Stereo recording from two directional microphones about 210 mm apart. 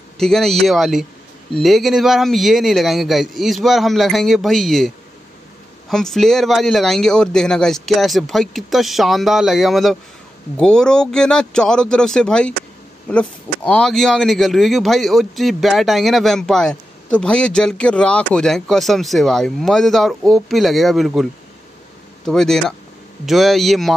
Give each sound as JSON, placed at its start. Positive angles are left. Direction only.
{"t": 0.2, "sound": "speech", "side_deg": 0}